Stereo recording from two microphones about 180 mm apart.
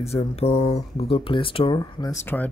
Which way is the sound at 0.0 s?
35° left (ahead or behind).